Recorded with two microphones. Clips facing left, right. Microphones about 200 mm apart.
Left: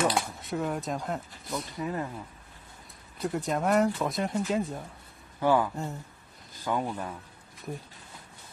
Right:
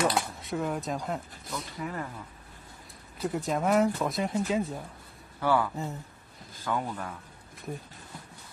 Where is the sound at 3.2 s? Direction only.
Centre (ahead or behind).